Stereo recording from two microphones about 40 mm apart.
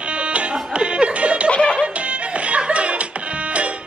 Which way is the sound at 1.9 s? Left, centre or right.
Right.